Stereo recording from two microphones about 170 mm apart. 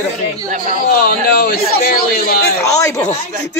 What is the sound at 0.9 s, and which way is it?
A man's voice, 55° left (ahead or behind).